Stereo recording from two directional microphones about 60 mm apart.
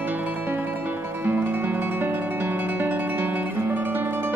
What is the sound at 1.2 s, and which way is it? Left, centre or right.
Music, right.